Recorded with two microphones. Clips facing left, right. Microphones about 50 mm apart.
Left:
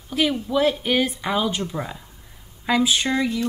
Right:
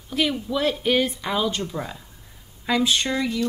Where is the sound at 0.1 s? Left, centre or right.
Centre.